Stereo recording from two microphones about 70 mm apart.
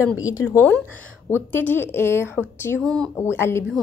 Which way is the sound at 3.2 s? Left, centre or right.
Left.